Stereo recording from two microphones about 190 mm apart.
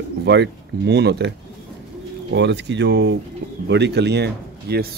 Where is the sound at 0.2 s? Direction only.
60° right (ahead or behind).